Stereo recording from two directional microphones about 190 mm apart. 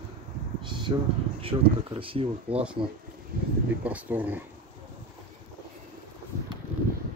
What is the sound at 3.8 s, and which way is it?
Speech, 10° right (ahead or behind).